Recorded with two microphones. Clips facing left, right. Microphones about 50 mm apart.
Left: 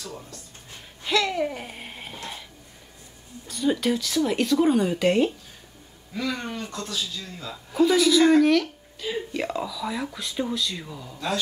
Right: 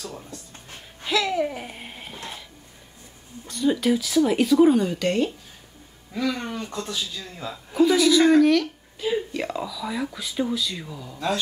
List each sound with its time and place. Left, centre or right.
1.0 s babbling: centre
3.4 s speech: centre
6.2 s speech: centre
7.7 s speech: centre